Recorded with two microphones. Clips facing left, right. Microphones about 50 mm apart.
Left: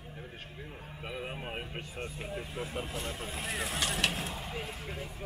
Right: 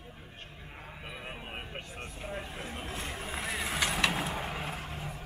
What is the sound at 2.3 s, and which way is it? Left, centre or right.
Speech, right.